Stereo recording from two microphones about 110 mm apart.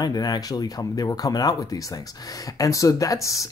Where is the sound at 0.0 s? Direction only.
35° left (ahead or behind).